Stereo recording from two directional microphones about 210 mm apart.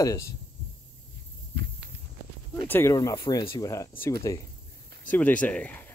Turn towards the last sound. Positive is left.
turn(degrees=10)  # may be behind; listen again after turning